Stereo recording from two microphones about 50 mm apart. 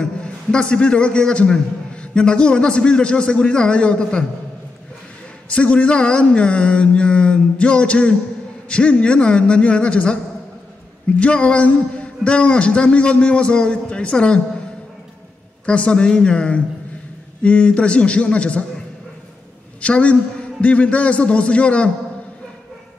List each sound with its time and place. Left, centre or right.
0.0 s a man's voice: centre
5.5 s a man's voice: left
11.1 s a man's voice: left
15.6 s a man's voice: left
19.8 s a man's voice: left